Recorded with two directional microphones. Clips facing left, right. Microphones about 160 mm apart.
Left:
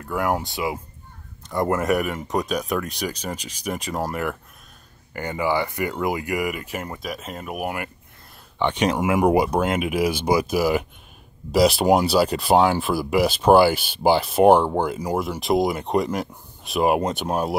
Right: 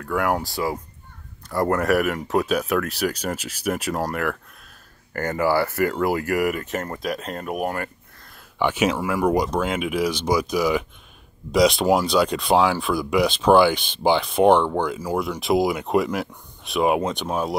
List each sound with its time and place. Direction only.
0.1 s speech: 5° left (ahead or behind)
6.3 s speech: 10° left (ahead or behind)
8.5 s speech: 10° right (ahead or behind)
8.9 s speech: 15° left (ahead or behind)
10.1 s speech: 55° left (ahead or behind)
10.4 s speech: 5° left (ahead or behind)